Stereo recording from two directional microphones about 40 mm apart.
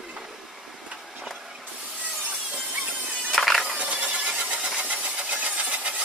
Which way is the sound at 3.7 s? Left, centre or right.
Right.